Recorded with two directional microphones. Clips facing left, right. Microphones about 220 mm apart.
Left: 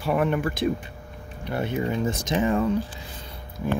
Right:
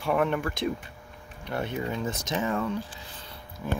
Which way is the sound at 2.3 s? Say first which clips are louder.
Left 6 dB; 15° left (ahead or behind).